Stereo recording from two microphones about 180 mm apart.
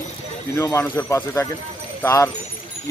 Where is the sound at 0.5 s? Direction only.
15° left (ahead or behind).